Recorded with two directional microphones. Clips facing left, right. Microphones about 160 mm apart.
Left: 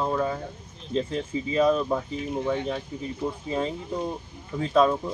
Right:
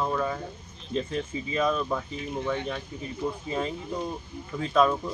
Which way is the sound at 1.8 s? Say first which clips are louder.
Left 4 dB; 15° left (ahead or behind).